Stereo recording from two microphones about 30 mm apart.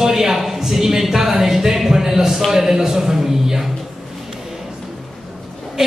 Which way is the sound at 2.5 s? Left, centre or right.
Centre.